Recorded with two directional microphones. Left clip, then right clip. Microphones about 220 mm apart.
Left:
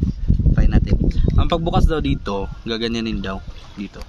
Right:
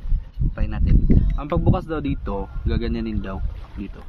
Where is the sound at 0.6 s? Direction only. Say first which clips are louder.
Left 5 dB; 15° left (ahead or behind).